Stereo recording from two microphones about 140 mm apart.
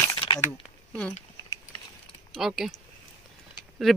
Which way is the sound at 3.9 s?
Centre (ahead or behind).